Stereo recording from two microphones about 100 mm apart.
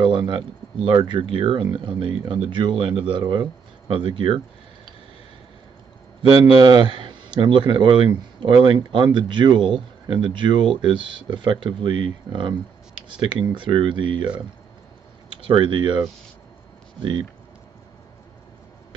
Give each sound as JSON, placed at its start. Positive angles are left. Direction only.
{"t": 0.0, "sound": "a sound", "side_deg": -55}
{"t": 0.8, "sound": "speech", "side_deg": -55}
{"t": 6.5, "sound": "speech", "side_deg": -45}
{"t": 15.4, "sound": "speech", "side_deg": -55}